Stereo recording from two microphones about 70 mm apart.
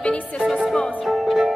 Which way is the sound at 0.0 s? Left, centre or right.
Centre.